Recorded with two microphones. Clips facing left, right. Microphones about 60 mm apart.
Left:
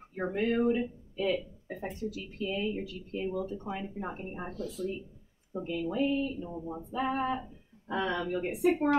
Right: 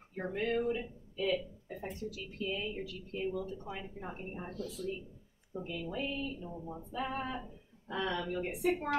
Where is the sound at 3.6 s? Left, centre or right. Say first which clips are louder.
Left 6 dB; left.